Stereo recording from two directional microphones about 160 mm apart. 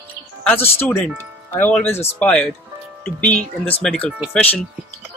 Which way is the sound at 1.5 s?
15° left (ahead or behind).